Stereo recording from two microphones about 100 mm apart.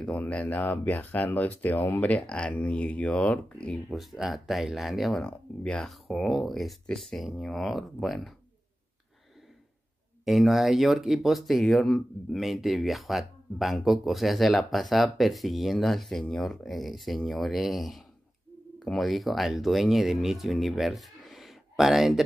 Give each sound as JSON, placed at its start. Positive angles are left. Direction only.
{"t": 0.0, "sound": "speech", "side_deg": 10}
{"t": 3.9, "sound": "speech", "side_deg": -5}
{"t": 5.2, "sound": "speech", "side_deg": 10}
{"t": 10.2, "sound": "speech", "side_deg": 0}